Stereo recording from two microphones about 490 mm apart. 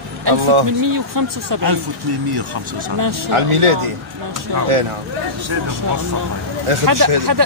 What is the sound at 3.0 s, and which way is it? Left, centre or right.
Speech, right.